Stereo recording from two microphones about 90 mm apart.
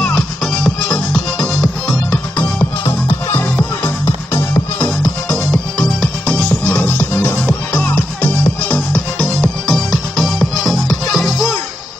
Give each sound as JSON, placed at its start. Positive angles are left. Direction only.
{"t": 0.9, "sound": "music", "side_deg": 10}
{"t": 3.1, "sound": "music", "side_deg": 25}
{"t": 4.7, "sound": "music", "side_deg": 5}